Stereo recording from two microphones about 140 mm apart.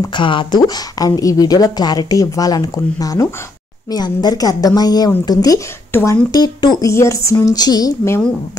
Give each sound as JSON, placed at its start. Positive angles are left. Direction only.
{"t": 0.0, "sound": "speech", "side_deg": 35}
{"t": 5.9, "sound": "speech", "side_deg": 15}
{"t": 6.3, "sound": "speech", "side_deg": 30}